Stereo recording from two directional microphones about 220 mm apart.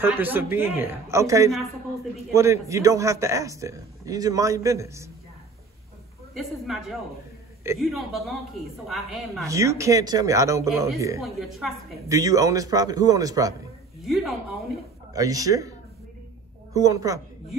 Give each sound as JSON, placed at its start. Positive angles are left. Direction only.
{"t": 0.0, "sound": "a man's voice", "side_deg": -10}
{"t": 6.3, "sound": "a woman's voice", "side_deg": 0}
{"t": 9.5, "sound": "a man's voice", "side_deg": -15}
{"t": 11.2, "sound": "a woman's voice", "side_deg": 0}
{"t": 12.1, "sound": "a man's voice", "side_deg": -15}
{"t": 14.0, "sound": "a woman's voice", "side_deg": 0}
{"t": 15.1, "sound": "a man's voice", "side_deg": -15}
{"t": 16.7, "sound": "a man's voice", "side_deg": -15}